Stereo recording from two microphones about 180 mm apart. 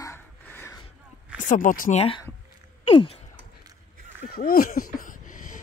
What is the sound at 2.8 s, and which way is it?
Sigh, 30° left (ahead or behind).